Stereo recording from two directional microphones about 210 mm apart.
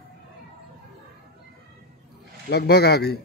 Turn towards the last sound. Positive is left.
turn(degrees=50)  # may be behind; listen again after turning